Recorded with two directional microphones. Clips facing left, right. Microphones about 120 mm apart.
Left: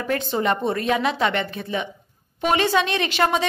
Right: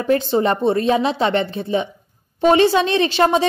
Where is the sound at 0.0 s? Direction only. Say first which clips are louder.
Right 6 dB; 30° right (ahead or behind).